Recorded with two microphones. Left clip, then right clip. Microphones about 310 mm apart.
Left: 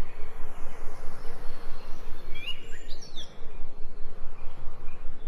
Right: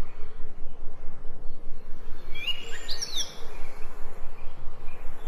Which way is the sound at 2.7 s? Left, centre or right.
Right.